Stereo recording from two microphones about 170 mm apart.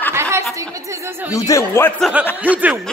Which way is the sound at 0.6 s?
20° right (ahead or behind).